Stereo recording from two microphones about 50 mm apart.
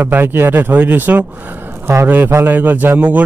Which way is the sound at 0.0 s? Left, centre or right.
Right.